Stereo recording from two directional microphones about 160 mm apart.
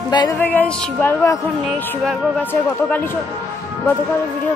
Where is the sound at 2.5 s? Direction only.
10° left (ahead or behind).